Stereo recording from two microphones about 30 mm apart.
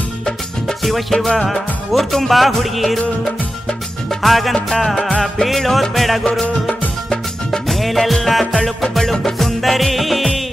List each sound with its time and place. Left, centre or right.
1.1 s music: centre
1.5 s music: centre
4.2 s music: centre
7.6 s music: centre
8.9 s music: centre
9.6 s music: centre